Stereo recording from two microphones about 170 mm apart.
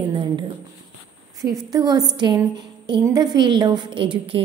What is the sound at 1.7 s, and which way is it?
A woman's voice, 20° right (ahead or behind).